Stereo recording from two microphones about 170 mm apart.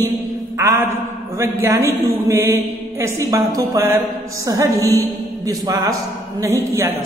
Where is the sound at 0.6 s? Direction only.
15° right (ahead or behind).